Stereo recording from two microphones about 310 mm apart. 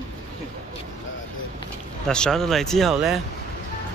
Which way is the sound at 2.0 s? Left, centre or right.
Centre.